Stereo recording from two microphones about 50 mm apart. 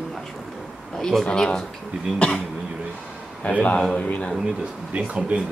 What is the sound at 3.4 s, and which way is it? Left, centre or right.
Speech, left.